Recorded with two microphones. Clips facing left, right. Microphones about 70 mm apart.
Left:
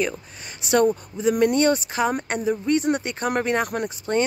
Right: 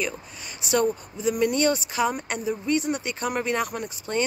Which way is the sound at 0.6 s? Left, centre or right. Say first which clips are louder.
Left 4 dB; left.